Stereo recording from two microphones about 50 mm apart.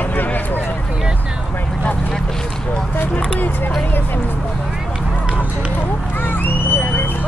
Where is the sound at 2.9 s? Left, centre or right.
Left.